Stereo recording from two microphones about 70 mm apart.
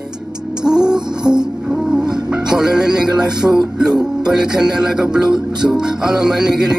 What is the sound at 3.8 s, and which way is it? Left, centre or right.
Music, centre.